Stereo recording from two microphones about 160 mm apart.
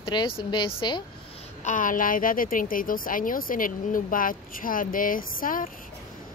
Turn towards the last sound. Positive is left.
turn(degrees=60)  # may be behind; listen again after turning